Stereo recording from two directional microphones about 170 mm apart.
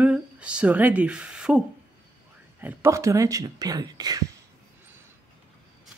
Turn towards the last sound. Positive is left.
turn(degrees=-25)  # may be behind; listen again after turning